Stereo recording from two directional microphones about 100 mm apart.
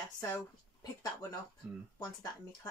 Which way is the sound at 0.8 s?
40° left (ahead or behind).